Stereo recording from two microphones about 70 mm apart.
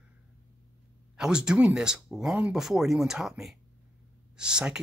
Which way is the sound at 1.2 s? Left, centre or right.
Centre.